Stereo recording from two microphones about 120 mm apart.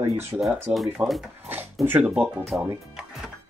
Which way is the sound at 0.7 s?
Centre (ahead or behind).